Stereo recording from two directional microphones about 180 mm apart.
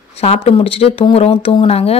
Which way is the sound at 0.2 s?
35° left (ahead or behind).